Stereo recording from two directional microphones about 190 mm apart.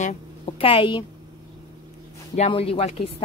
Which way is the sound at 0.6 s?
30° left (ahead or behind).